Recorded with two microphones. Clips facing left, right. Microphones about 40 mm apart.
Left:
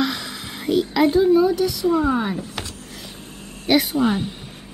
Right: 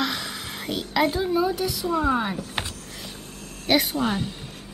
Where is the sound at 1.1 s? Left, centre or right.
Centre.